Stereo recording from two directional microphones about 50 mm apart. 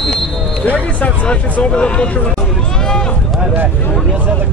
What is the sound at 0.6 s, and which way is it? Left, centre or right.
Speech, left.